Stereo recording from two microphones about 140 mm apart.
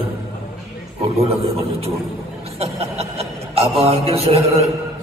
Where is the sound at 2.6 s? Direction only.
45° right (ahead or behind).